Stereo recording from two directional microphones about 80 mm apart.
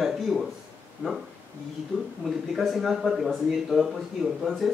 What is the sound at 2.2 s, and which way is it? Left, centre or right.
A man's voice, centre.